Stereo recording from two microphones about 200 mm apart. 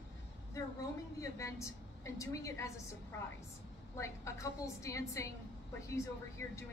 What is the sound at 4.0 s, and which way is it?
A woman's voice, 15° left (ahead or behind).